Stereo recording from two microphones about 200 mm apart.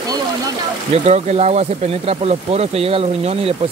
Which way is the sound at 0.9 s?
35° right (ahead or behind).